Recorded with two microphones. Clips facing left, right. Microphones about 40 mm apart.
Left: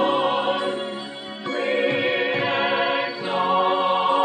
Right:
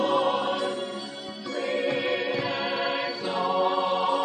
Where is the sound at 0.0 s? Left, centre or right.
Left.